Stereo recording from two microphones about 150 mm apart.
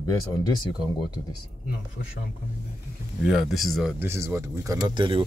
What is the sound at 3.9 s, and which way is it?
Speech, 15° right (ahead or behind).